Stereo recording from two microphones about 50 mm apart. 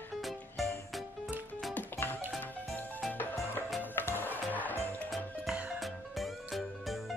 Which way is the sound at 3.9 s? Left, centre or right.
Left.